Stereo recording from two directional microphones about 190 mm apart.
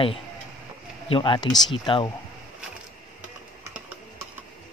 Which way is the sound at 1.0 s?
25° left (ahead or behind).